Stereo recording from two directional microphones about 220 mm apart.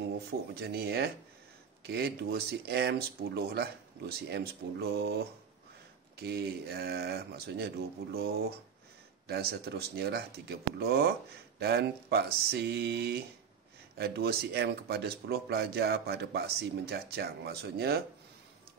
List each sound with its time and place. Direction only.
0.6 s speech: 45° right (ahead or behind)
6.1 s speech: 45° right (ahead or behind)